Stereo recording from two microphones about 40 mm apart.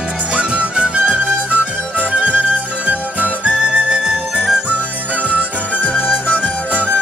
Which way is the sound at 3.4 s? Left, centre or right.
Right.